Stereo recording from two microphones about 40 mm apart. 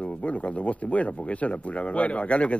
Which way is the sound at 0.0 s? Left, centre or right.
Left.